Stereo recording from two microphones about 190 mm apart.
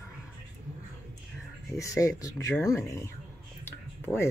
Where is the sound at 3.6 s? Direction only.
10° left (ahead or behind).